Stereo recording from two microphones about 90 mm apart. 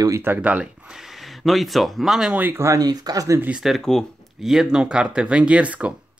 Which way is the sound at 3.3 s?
15° right (ahead or behind).